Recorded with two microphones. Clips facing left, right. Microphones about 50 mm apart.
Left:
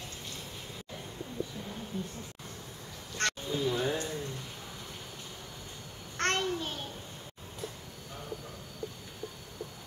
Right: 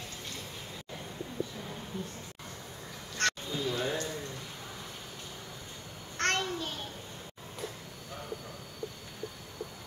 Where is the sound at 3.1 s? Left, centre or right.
Left.